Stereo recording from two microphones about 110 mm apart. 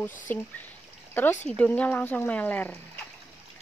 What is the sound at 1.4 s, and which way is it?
Speech, 15° left (ahead or behind).